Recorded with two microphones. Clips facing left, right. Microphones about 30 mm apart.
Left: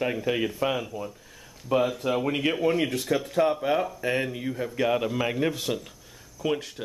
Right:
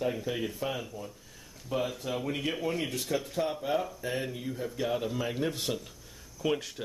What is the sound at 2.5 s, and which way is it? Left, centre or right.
Speech, left.